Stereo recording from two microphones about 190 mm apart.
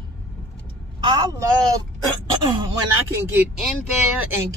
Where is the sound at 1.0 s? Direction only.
25° right (ahead or behind).